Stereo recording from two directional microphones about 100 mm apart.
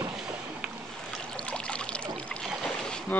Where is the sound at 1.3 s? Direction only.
10° left (ahead or behind).